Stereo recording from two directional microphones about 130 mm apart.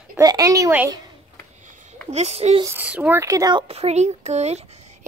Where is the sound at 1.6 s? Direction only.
80° right.